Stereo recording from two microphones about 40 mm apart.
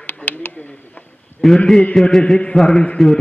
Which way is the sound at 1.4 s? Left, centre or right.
Centre.